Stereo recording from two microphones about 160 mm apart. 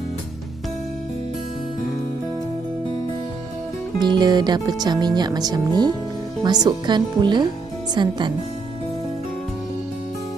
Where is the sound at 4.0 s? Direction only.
25° right (ahead or behind).